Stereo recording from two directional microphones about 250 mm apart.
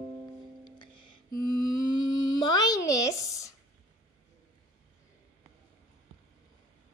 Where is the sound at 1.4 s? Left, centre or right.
Left.